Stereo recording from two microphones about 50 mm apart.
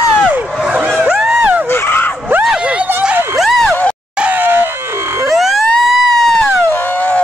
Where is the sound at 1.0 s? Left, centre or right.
Centre.